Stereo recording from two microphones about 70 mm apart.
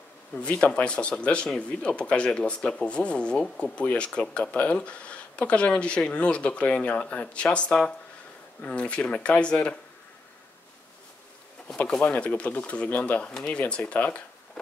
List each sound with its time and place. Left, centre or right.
0.4 s speech: centre
12.0 s speech: left